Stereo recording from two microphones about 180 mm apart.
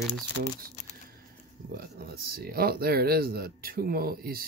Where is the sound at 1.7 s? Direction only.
60° right (ahead or behind).